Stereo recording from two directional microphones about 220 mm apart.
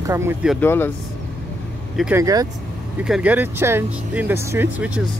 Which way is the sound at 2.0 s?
10° right (ahead or behind).